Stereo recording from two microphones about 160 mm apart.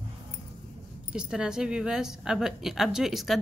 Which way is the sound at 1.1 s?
5° right (ahead or behind).